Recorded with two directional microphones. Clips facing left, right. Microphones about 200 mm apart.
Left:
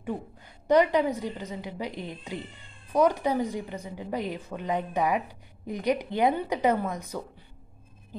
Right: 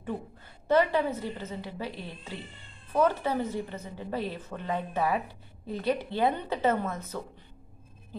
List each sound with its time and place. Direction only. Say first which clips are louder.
0.7 s a woman's voice: left 3 dB; 15° left (ahead or behind)